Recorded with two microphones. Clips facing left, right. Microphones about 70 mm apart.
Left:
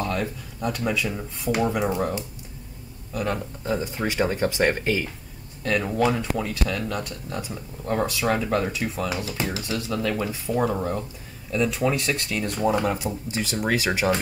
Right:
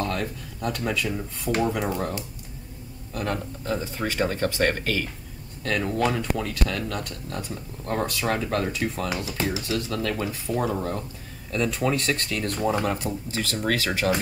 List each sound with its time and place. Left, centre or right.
0.0 s speech: centre
3.6 s speech: centre